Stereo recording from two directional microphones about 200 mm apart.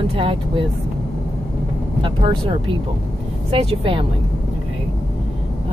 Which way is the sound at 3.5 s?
25° right (ahead or behind).